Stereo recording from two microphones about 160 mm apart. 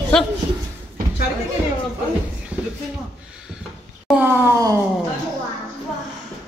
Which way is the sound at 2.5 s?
10° right (ahead or behind).